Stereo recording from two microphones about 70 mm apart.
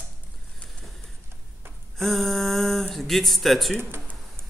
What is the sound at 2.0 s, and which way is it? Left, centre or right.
A man's voice, centre.